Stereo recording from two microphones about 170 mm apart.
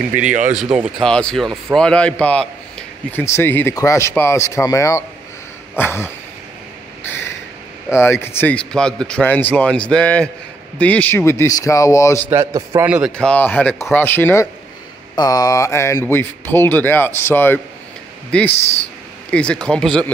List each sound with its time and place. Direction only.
0.7 s speech: 20° right (ahead or behind)
1.0 s a man's voice: 5° left (ahead or behind)
7.0 s a sound: 15° left (ahead or behind)
7.9 s a man's voice: 15° left (ahead or behind)
12.3 s a man's voice: 15° right (ahead or behind)
13.1 s a man's voice: 5° left (ahead or behind)
18.5 s speech: 40° left (ahead or behind)
19.3 s speech: 5° left (ahead or behind)